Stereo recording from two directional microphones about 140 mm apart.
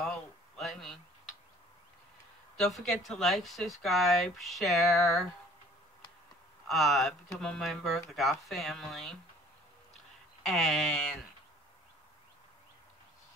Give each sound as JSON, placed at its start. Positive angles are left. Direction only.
{"t": 0.0, "sound": "a sound", "side_deg": 5}
{"t": 2.5, "sound": "speech", "side_deg": 5}
{"t": 6.7, "sound": "speech", "side_deg": 0}
{"t": 10.4, "sound": "speech", "side_deg": 0}